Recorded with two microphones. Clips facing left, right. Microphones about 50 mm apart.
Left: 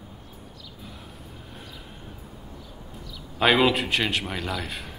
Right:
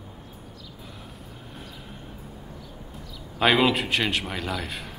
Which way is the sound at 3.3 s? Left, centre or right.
Centre.